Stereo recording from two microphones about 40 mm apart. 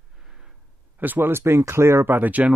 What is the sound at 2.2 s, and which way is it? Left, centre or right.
Speech, right.